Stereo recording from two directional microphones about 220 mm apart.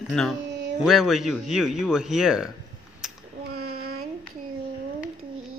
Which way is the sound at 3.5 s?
45° right (ahead or behind).